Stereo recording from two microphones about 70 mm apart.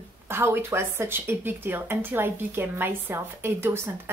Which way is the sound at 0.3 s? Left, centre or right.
Right.